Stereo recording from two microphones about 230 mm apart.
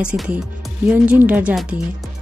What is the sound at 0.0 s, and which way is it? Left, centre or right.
A woman's voice, centre.